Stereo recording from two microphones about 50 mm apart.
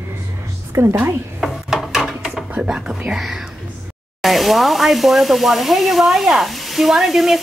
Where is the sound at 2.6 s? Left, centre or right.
Centre.